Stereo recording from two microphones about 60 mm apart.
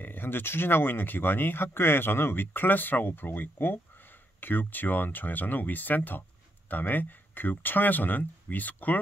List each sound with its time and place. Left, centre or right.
0.0 s speech: left